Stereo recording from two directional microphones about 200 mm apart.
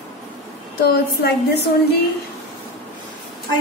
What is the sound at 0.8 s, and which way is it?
Speech, 50° left (ahead or behind).